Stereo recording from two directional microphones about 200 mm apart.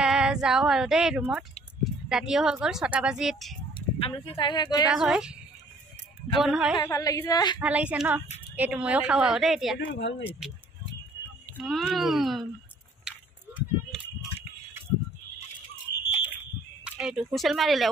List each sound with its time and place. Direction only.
0.0 s a woman's voice: 5° right (ahead or behind)
3.7 s speech: 25° left (ahead or behind)
4.8 s a woman's voice: 5° right (ahead or behind)
6.8 s a woman's voice: 15° left (ahead or behind)
7.6 s a woman's voice: 5° right (ahead or behind)
9.8 s speech: 65° left (ahead or behind)
11.5 s a woman's voice: centre (ahead or behind)
13.1 s a sound: 5° right (ahead or behind)
16.8 s speech: 5° right (ahead or behind)